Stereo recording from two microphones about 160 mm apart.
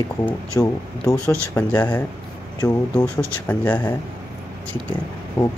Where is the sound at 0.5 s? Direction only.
20° left (ahead or behind).